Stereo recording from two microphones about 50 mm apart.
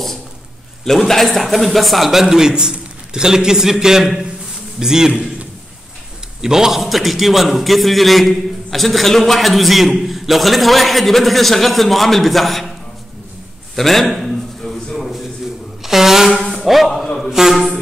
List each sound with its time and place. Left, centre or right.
0.8 s a man's voice: centre
6.4 s a man's voice: centre
13.7 s a sound: centre
15.8 s shuffling cards: centre
16.5 s a sound: centre
17.3 s a man's voice: centre